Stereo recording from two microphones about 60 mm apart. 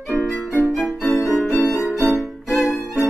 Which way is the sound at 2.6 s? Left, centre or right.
Left.